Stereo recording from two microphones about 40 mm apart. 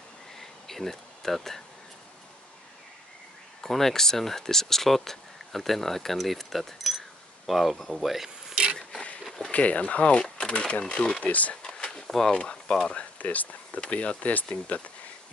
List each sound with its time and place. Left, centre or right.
0.4 s a sound: centre
3.6 s speech: centre
9.5 s speech: left
11.6 s a sound: left
12.3 s speech: left
13.2 s speech: left
13.7 s speech: left
14.3 s speech: left